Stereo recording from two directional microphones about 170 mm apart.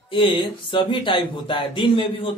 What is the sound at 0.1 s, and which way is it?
Speech, 30° left (ahead or behind).